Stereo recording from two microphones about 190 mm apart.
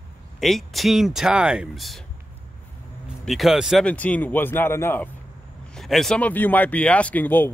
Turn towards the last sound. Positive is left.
turn(degrees=10)  # may be behind; listen again after turning